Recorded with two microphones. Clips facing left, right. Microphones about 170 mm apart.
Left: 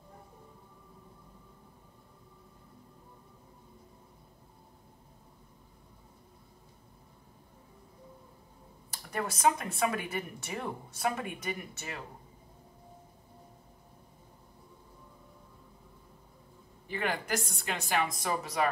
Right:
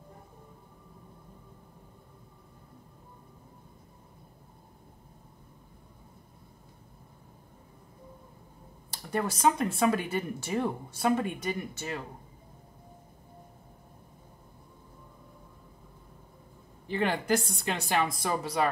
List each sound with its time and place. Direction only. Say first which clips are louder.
8.9 s speech: right 5 dB; 30° right (ahead or behind)
16.8 s speech: right 5 dB; 30° right (ahead or behind)